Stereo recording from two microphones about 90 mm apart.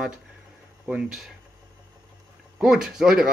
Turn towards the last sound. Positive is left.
turn(degrees=-10)  # may be behind; listen again after turning